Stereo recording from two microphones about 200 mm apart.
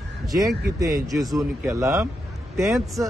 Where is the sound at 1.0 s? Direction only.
Centre (ahead or behind).